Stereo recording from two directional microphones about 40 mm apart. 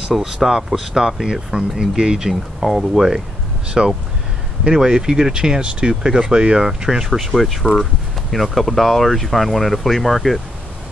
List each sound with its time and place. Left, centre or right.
0.2 s speech: centre
2.6 s speech: centre
4.6 s speech: centre
7.3 s speech: centre